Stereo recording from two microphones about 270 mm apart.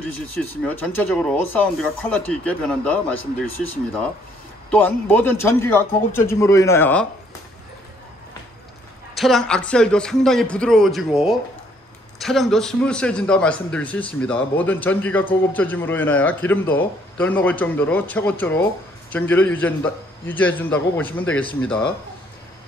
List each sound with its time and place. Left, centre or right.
0.4 s speech: centre
4.6 s a man's voice: centre
9.1 s a man's voice: centre